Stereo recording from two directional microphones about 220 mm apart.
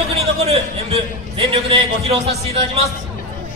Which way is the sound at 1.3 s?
25° right (ahead or behind).